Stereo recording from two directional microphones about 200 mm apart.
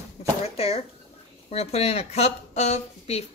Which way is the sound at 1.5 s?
30° left (ahead or behind).